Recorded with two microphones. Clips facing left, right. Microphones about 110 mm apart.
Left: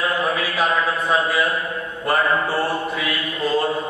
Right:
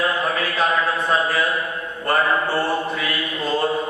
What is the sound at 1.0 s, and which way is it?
Speech, centre (ahead or behind).